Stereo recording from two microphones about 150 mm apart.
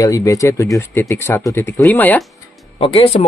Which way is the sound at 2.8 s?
40° left (ahead or behind).